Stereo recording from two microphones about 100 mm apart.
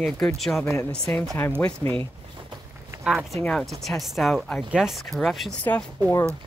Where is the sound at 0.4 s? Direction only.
Centre (ahead or behind).